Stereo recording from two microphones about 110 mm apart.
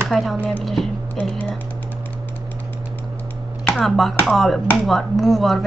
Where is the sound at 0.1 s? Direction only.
Centre (ahead or behind).